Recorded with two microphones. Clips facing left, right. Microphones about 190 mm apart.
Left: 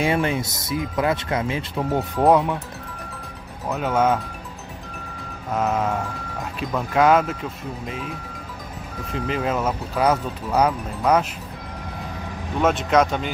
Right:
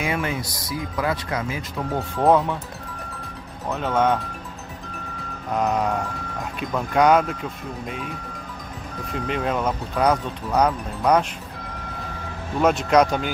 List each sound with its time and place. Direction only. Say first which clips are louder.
0.0 s speech: left 4 dB; 30° left (ahead or behind)
2.0 s speech: left 1 dB; centre (ahead or behind)
3.6 s speech: left 1 dB; 5° left (ahead or behind)
5.5 s speech: even; centre (ahead or behind)
9.1 s speech: left 1 dB; centre (ahead or behind)
12.6 s speech: right 1 dB; centre (ahead or behind)